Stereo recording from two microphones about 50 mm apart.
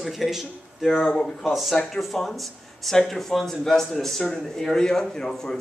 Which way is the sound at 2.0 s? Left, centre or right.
Centre.